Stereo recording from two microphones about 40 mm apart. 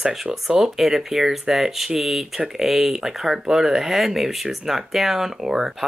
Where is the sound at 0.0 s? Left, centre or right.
Centre.